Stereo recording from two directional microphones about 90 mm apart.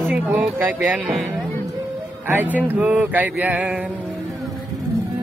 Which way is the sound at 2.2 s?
20° right (ahead or behind).